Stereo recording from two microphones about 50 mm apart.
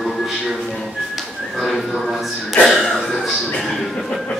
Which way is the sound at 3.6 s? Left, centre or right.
Centre.